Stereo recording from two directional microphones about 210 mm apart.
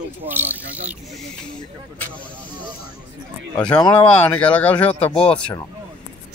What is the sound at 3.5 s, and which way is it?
Speech, 5° left (ahead or behind).